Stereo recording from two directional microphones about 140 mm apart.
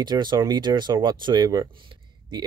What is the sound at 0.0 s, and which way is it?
Speech, 30° right (ahead or behind).